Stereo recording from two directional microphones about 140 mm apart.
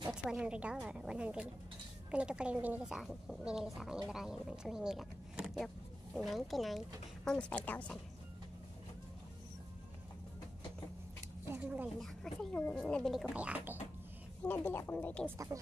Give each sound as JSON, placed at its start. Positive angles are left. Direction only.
{"t": 0.1, "sound": "a woman's voice", "side_deg": -5}
{"t": 11.4, "sound": "a woman's voice", "side_deg": -15}
{"t": 12.0, "sound": "a woman's voice", "side_deg": 5}
{"t": 13.3, "sound": "a woman's voice", "side_deg": -10}
{"t": 14.4, "sound": "a woman's voice", "side_deg": 15}
{"t": 15.2, "sound": "speech", "side_deg": -20}